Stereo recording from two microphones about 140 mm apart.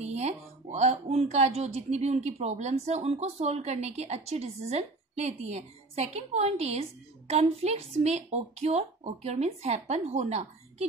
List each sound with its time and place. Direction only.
0.0 s a woman's voice: 50° right (ahead or behind)